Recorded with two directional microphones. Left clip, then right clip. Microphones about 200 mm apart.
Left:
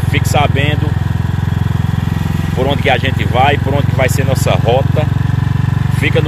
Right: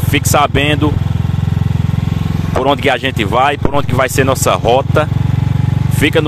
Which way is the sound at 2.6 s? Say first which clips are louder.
Right 1 dB; 40° right (ahead or behind).